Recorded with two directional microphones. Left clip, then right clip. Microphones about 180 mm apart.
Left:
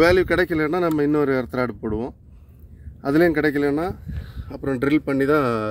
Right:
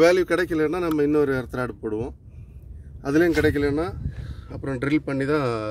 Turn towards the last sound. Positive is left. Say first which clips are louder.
# left 4 dB
turn(degrees=40)  # may be behind; listen again after turning